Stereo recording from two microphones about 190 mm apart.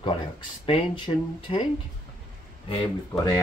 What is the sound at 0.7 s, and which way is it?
Speech, 25° left (ahead or behind).